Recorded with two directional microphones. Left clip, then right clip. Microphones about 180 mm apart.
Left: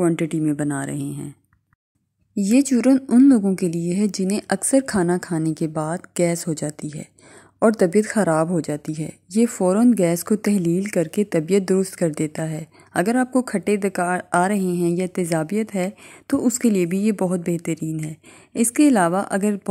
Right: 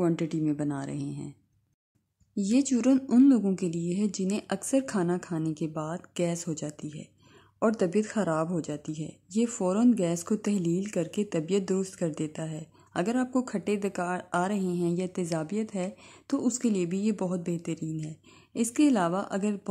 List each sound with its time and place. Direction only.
0.0 s a woman's voice: 15° left (ahead or behind)
2.3 s a woman's voice: 20° left (ahead or behind)